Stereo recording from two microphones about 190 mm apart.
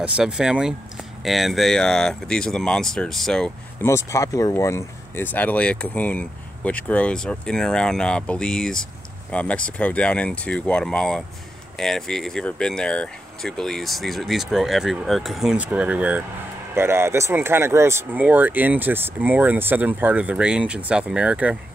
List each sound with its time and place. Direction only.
0.0 s speech: 5° right (ahead or behind)
3.8 s speech: 15° left (ahead or behind); by 21.5 s 5° right (ahead or behind)